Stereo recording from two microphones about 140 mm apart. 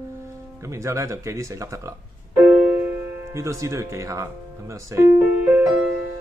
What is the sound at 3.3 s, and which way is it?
Speech, 20° right (ahead or behind).